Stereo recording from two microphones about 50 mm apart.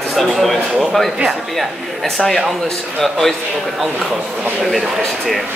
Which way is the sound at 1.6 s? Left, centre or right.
Centre.